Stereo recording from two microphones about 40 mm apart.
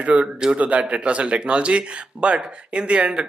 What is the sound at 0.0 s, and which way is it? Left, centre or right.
Speech, right.